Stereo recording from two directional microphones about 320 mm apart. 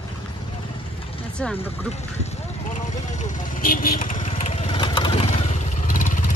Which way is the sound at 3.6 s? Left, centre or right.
Left.